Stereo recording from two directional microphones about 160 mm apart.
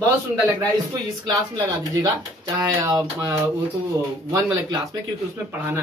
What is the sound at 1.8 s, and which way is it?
Speech, 25° right (ahead or behind).